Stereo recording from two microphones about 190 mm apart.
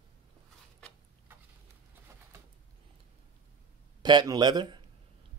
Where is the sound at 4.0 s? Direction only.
20° right (ahead or behind).